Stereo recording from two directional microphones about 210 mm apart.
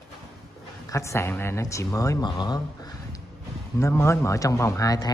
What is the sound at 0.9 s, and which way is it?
Speech, 15° left (ahead or behind).